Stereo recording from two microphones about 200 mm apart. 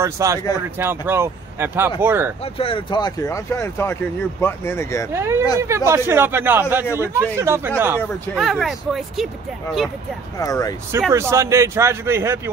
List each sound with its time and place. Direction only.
0.0 s speech: 15° right (ahead or behind)
2.4 s speech: 30° left (ahead or behind)
5.1 s speech: 10° right (ahead or behind)
8.4 s speech: centre (ahead or behind)
10.4 s speech: 20° left (ahead or behind)
10.9 s speech: 15° right (ahead or behind)